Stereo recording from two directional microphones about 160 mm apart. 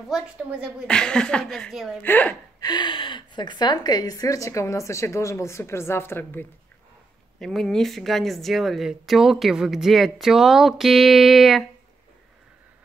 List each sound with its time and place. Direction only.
0.1 s speech: 5° right (ahead or behind)
0.8 s speech: 5° left (ahead or behind)
2.0 s speech: 10° left (ahead or behind)
2.6 s a woman's voice: 25° left (ahead or behind)
7.3 s speech: centre (ahead or behind)